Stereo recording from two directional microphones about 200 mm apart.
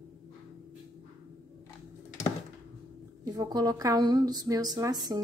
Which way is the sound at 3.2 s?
20° right (ahead or behind).